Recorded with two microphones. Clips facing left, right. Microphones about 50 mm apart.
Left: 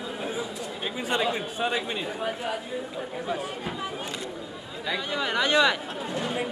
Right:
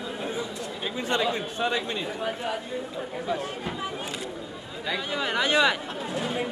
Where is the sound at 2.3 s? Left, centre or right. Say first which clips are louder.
Even; centre.